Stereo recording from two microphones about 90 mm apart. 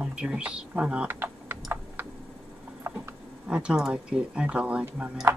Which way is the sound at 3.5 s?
10° right (ahead or behind).